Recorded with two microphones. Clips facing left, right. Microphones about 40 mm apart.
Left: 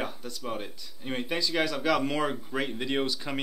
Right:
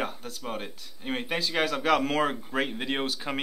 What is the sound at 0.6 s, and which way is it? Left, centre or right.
Speech, centre.